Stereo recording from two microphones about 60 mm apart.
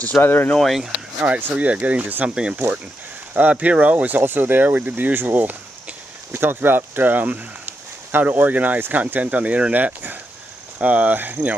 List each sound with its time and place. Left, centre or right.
0.0 s speech: left
0.6 s speech: centre
1.2 s speech: right
3.3 s speech: right